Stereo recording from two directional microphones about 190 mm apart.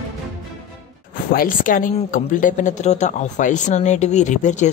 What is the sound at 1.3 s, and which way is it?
A woman's voice, 50° left (ahead or behind).